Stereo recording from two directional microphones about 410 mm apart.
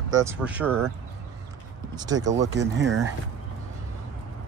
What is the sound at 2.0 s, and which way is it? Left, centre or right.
Speech, centre.